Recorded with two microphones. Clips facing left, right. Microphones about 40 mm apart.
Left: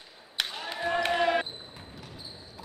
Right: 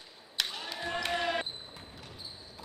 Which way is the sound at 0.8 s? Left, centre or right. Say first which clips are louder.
Left 7 dB; left.